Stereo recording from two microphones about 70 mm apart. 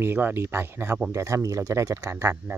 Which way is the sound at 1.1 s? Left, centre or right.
Right.